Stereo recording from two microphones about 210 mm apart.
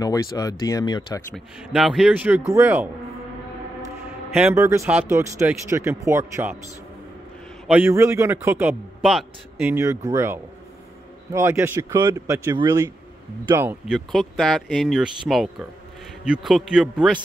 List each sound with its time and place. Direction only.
0.0 s speech: 15° left (ahead or behind)
1.3 s a man's voice: centre (ahead or behind)
4.3 s a man's voice: 5° right (ahead or behind)
7.6 s a man's voice: 10° right (ahead or behind)